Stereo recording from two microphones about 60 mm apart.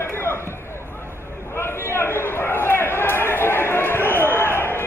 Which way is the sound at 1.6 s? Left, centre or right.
Left.